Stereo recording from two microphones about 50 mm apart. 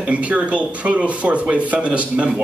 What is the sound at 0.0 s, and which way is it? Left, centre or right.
A man's voice, right.